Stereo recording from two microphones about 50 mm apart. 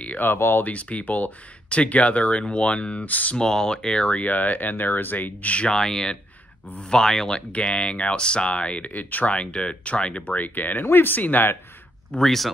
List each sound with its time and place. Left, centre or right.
0.2 s speech: left
0.7 s speech: left
3.3 s speech: centre
4.2 s speech: left
5.8 s speech: centre; by 9.3 s left
9.3 s speech: left
12.1 s speech: centre